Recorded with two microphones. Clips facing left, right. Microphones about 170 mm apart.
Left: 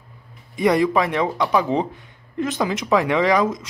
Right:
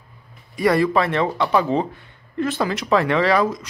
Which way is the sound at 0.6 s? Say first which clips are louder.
Even; 15° left (ahead or behind).